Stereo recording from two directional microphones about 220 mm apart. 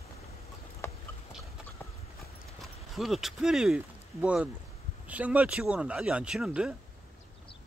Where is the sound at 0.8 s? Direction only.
10° left (ahead or behind).